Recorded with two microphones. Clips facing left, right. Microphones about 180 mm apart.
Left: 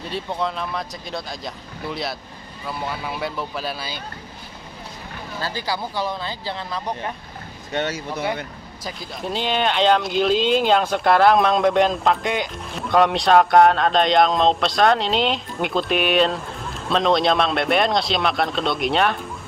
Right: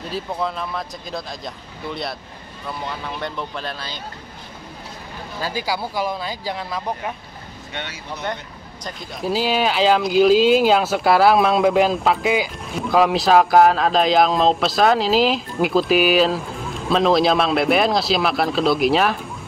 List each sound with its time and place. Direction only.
0.1 s speech: centre (ahead or behind)
5.4 s speech: 10° right (ahead or behind)
7.7 s speech: 45° left (ahead or behind)
8.8 s speech: 5° right (ahead or behind)